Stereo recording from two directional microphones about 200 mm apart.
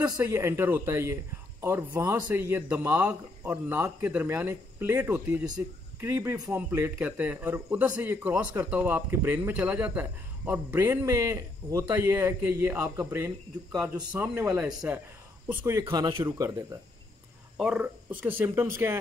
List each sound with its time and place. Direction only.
0.2 s speech: 10° right (ahead or behind)
17.6 s speech: 5° right (ahead or behind)